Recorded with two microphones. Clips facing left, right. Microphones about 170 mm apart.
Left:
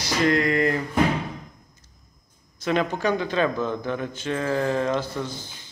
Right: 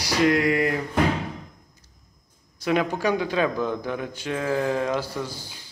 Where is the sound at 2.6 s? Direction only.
10° right (ahead or behind).